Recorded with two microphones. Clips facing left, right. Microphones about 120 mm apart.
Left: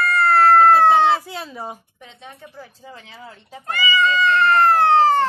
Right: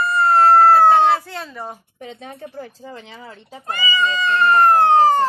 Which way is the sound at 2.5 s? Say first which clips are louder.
Right 6 dB; 50° right (ahead or behind).